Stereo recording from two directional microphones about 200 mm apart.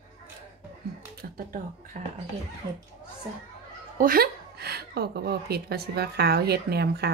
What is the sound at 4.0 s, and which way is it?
A woman's voice, 50° right (ahead or behind).